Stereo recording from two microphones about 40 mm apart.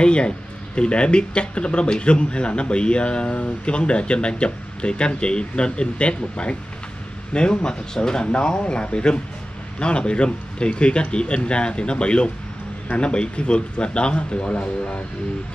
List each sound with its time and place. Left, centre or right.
0.0 s speech: left